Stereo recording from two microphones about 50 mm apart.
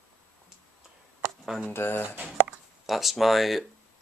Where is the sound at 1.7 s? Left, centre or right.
Left.